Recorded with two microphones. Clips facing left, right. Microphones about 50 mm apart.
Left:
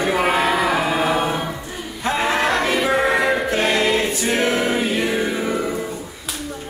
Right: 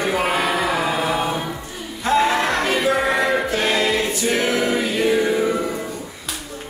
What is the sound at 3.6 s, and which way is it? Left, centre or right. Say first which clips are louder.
Choir: left 1 dB; centre.